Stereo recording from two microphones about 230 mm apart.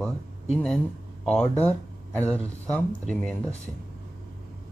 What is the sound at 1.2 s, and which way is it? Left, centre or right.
Speech, centre.